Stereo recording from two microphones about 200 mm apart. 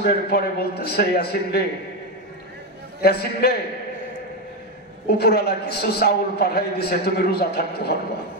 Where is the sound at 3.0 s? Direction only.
50° left (ahead or behind).